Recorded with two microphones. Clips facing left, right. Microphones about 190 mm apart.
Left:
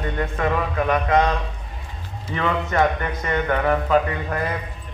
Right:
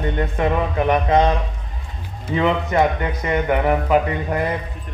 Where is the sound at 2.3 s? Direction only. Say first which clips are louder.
Right 4 dB; 20° right (ahead or behind).